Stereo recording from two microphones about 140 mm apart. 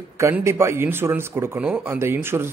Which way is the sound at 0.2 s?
20° right (ahead or behind).